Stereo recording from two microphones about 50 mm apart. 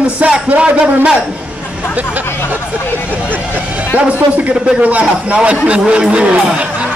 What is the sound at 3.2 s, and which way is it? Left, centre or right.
Vehicle, right.